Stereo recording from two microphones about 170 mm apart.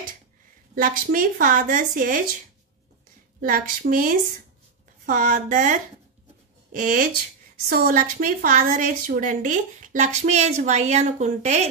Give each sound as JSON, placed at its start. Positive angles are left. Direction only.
{"t": 0.7, "sound": "a woman's voice", "side_deg": -55}
{"t": 3.3, "sound": "a woman's voice", "side_deg": -55}